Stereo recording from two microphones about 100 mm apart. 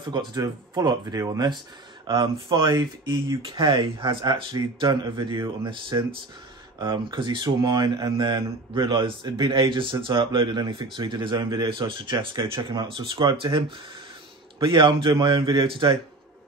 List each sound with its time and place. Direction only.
0.0 s speech: 50° right (ahead or behind)
1.2 s speech: 35° right (ahead or behind)
2.0 s speech: 50° right (ahead or behind)
3.5 s speech: 55° right (ahead or behind)
12.4 s speech: 40° right (ahead or behind)
12.9 s speech: 60° right (ahead or behind)